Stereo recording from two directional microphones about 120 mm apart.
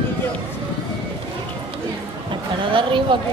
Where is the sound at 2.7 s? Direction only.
45° right (ahead or behind).